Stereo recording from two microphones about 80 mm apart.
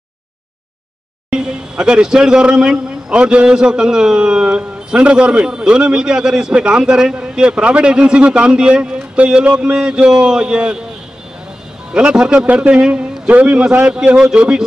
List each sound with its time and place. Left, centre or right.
1.3 s speech: centre
11.9 s speech: centre